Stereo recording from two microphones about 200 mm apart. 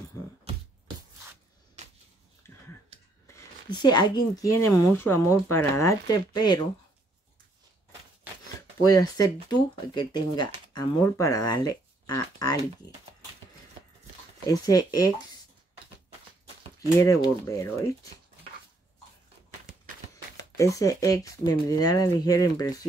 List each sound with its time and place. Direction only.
1.8 s a sound: 35° right (ahead or behind)
2.4 s a sound: 15° left (ahead or behind)
3.3 s speech: 20° left (ahead or behind)
8.5 s speech: 20° left (ahead or behind)
14.5 s speech: 20° left (ahead or behind)
17.0 s speech: 15° left (ahead or behind)
20.5 s speech: 15° left (ahead or behind)